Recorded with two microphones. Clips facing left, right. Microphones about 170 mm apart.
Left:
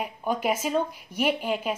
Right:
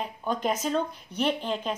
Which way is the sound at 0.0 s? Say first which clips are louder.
Left 2 dB; 10° left (ahead or behind).